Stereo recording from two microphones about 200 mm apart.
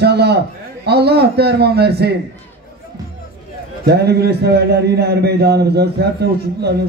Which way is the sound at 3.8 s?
55° right (ahead or behind).